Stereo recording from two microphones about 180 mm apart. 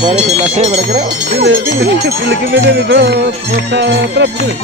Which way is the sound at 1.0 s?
70° right (ahead or behind).